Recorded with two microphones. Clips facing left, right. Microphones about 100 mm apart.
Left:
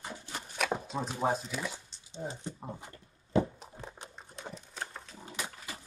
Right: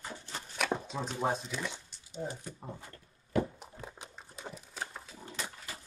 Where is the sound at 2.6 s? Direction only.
20° left (ahead or behind).